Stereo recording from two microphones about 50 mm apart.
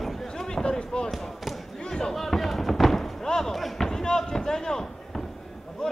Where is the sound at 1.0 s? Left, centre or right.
Centre.